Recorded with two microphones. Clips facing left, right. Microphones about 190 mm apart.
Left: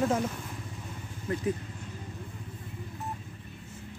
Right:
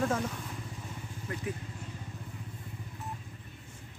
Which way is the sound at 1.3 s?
30° left (ahead or behind).